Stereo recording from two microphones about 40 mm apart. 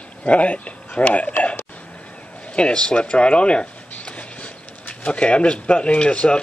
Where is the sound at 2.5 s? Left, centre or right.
Left.